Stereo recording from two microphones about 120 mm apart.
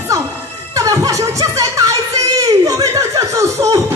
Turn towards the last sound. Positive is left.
turn(degrees=-25)  # may be behind; listen again after turning